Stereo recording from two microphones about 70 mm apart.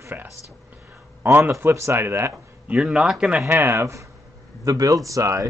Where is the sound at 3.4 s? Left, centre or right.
Right.